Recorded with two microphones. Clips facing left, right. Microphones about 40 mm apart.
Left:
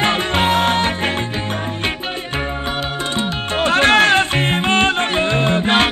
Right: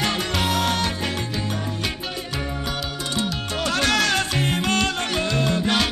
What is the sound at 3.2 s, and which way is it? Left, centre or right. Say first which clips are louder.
Music: left 5 dB; left.